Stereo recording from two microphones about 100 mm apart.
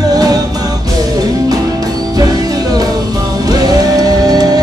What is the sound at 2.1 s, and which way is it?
Music, 40° right (ahead or behind).